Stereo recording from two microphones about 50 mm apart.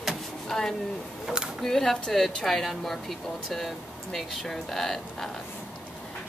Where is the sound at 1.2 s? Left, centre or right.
Centre.